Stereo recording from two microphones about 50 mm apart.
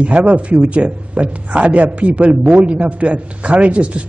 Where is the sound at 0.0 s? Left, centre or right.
Right.